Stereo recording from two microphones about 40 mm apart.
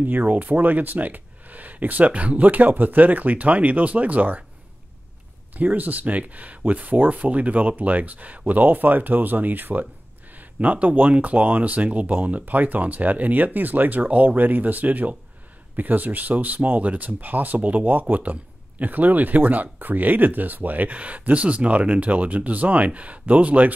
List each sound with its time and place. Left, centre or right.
0.0 s speech: right
5.5 s speech: right
10.3 s speech: right
16.8 s speech: right